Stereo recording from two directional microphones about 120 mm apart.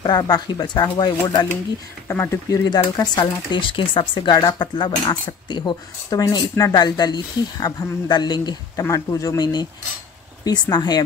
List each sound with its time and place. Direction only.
0.0 s speech: 35° left (ahead or behind)
2.0 s speech: 20° left (ahead or behind)
2.7 s speech: 35° left (ahead or behind)